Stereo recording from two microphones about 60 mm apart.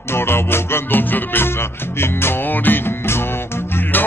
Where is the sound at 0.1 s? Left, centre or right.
Left.